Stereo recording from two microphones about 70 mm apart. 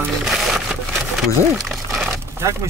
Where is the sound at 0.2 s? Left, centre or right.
Centre.